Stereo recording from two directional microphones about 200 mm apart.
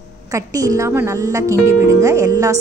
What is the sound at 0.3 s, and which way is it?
A woman's voice, 15° right (ahead or behind).